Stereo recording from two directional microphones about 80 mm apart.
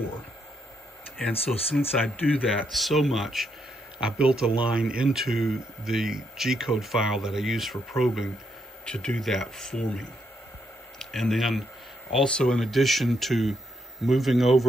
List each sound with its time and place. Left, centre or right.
1.8 s speech: left
2.4 s speech: centre
8.8 s speech: centre
11.0 s speech: centre